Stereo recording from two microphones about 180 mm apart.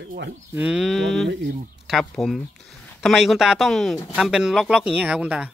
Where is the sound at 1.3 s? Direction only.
80° right.